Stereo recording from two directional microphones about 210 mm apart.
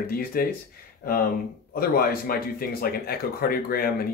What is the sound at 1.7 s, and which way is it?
Speech, 45° left (ahead or behind).